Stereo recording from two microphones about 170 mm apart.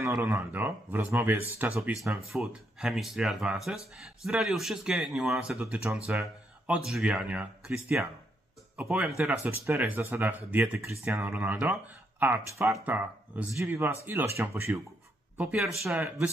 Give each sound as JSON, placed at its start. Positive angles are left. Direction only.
{"t": 0.0, "sound": "speech", "side_deg": -15}